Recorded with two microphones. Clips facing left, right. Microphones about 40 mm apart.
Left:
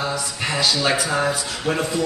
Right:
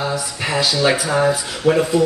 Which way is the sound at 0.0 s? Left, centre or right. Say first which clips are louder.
Right 2 dB; centre.